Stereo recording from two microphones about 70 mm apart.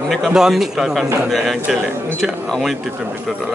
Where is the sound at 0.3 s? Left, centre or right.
Centre.